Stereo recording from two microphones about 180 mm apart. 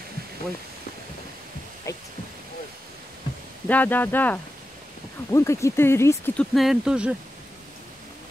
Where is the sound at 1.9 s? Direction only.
15° left (ahead or behind).